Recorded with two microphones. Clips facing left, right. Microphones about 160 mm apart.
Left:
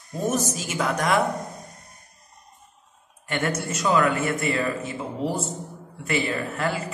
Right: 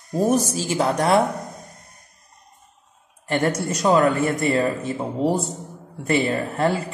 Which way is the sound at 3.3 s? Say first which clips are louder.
Right 5 dB; 35° right (ahead or behind).